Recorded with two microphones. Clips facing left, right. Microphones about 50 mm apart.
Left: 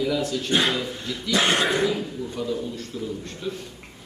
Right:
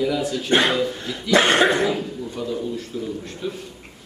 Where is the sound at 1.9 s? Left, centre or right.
Centre.